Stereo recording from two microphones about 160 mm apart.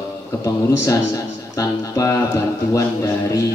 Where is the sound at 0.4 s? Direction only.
20° left (ahead or behind).